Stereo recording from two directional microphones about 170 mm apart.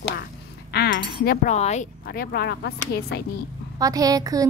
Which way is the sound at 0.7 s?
90° left.